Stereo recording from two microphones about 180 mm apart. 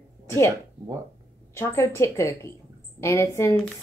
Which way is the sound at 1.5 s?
15° left (ahead or behind).